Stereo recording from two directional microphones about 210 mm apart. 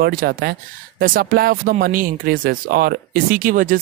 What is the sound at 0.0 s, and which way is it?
Speech, 45° right (ahead or behind).